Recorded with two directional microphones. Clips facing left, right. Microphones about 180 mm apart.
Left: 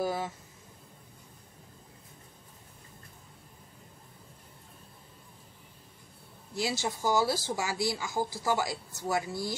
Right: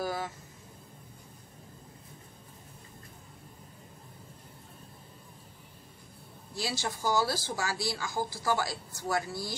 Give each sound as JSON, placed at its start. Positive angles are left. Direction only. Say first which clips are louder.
{"t": 0.0, "sound": "speech", "louder": "left 2 dB", "side_deg": 25}
{"t": 6.5, "sound": "speech", "louder": "left 3 dB", "side_deg": 20}